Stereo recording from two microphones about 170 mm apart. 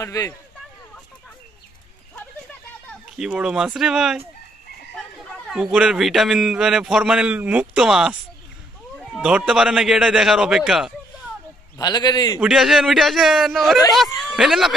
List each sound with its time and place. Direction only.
0.0 s speech: 20° left (ahead or behind)
3.2 s a man's voice: 5° right (ahead or behind)
11.8 s a man's voice: 25° left (ahead or behind)
12.4 s a man's voice: centre (ahead or behind)